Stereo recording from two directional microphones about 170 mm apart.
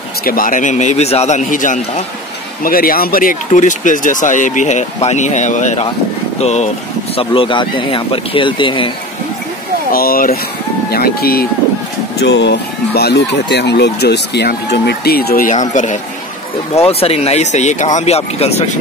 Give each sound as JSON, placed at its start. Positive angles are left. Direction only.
{"t": 0.2, "sound": "speech", "side_deg": 55}
{"t": 7.2, "sound": "speech", "side_deg": 30}
{"t": 9.9, "sound": "speech", "side_deg": 60}
{"t": 12.2, "sound": "speech", "side_deg": 90}
{"t": 15.5, "sound": "speech", "side_deg": 45}